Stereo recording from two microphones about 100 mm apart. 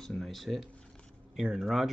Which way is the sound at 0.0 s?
5° left (ahead or behind).